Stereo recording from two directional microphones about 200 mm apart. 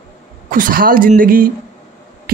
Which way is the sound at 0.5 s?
45° right (ahead or behind).